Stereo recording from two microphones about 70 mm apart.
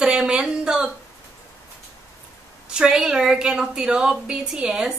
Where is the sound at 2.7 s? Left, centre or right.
Centre.